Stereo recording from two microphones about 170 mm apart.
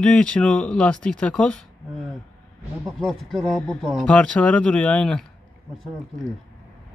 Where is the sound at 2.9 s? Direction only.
Centre (ahead or behind).